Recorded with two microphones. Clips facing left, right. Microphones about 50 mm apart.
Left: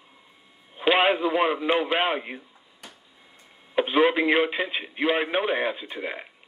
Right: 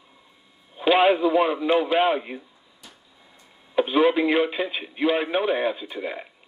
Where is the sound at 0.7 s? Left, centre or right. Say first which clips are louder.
Right 3 dB; centre.